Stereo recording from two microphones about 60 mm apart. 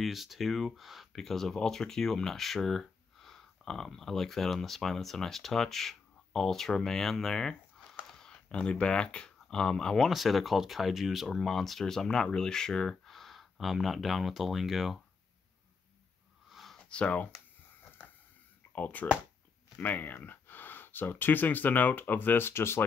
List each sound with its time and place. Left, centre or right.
0.0 s speech: centre
10.0 s speech: centre
16.4 s a sound: centre
16.7 s speech: centre
18.8 s speech: left